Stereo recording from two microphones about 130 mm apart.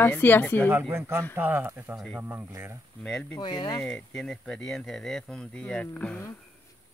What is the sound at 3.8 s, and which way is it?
Speech, 5° left (ahead or behind).